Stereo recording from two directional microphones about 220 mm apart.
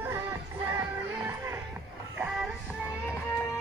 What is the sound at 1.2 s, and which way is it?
Music, 15° right (ahead or behind).